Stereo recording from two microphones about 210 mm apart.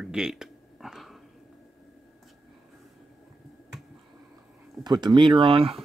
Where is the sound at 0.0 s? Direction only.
5° right (ahead or behind).